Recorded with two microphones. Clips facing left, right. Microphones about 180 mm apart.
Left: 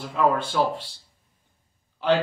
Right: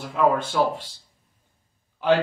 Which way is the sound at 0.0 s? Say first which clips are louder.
Right 1 dB; 5° right (ahead or behind).